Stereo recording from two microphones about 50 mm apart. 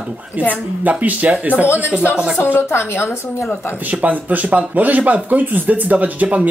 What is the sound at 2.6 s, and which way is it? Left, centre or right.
Speech, left.